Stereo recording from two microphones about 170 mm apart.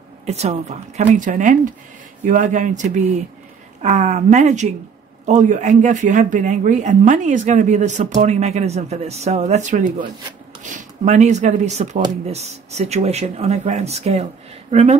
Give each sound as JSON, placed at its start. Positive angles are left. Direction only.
{"t": 0.3, "sound": "speech", "side_deg": -40}